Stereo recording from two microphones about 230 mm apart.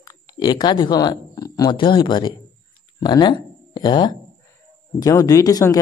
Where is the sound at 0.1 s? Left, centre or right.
Centre.